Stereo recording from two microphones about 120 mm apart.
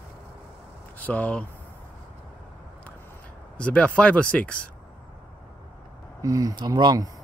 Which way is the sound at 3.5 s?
10° left (ahead or behind).